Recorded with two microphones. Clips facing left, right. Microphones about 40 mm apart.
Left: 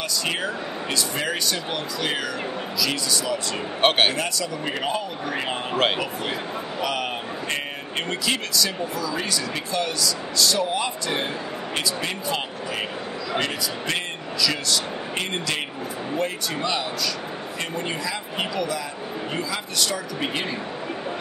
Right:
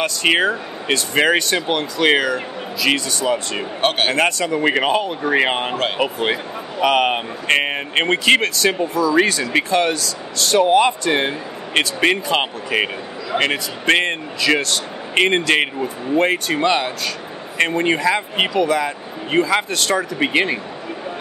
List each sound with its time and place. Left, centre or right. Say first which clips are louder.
0.0 s speech: right 9 dB; right
6.8 s speech: right 12 dB; right